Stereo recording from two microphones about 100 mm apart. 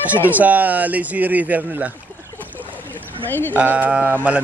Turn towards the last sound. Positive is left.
turn(degrees=-15)  # may be behind; listen again after turning